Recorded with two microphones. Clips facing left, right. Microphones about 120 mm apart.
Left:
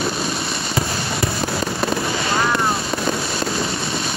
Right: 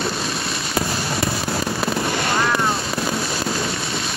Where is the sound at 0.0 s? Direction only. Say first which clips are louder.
Left 2 dB; centre (ahead or behind).